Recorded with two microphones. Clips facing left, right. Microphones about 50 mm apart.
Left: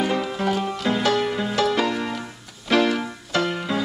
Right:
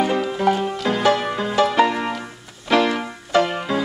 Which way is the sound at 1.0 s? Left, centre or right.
Centre.